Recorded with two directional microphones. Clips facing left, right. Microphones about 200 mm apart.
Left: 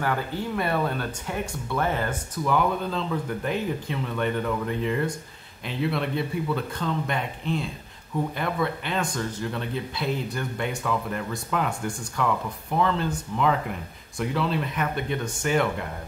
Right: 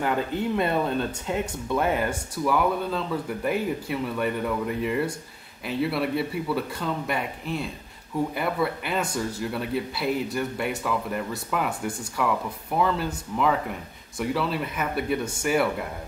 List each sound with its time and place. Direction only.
0.0 s speech: 20° right (ahead or behind)